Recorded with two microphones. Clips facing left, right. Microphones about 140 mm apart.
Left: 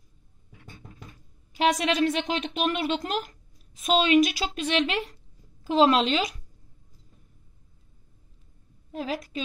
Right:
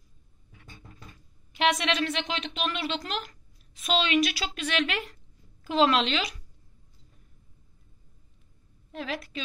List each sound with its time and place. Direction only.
1.5 s a woman's voice: 40° left (ahead or behind)
8.9 s a woman's voice: 35° left (ahead or behind)